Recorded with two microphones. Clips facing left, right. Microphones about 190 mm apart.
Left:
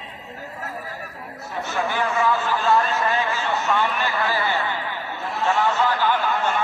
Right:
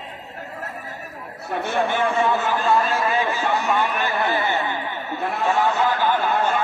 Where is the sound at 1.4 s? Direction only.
65° right (ahead or behind).